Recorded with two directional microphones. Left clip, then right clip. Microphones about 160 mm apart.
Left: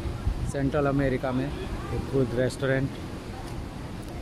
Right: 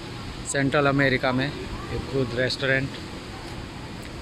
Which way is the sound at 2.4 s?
20° left (ahead or behind).